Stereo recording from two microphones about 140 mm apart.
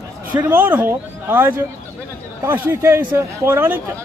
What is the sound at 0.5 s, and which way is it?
Speech, 15° right (ahead or behind).